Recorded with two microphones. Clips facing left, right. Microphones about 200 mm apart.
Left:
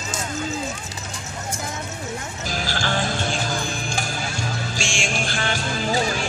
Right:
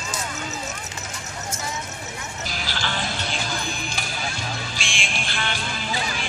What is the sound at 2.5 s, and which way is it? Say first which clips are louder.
Music: left 6 dB; 45° left (ahead or behind).